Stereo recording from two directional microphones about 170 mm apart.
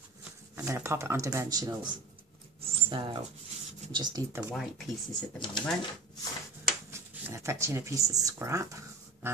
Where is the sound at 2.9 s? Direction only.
30° right (ahead or behind).